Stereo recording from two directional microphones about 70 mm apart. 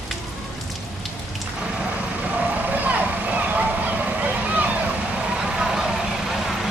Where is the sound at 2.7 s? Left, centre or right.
Right.